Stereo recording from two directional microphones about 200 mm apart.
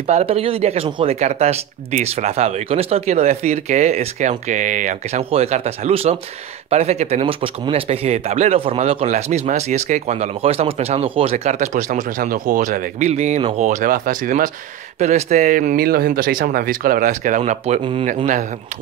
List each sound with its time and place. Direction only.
0.0 s speech: 35° right (ahead or behind)